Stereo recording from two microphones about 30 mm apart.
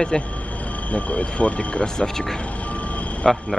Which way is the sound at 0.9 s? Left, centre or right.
Left.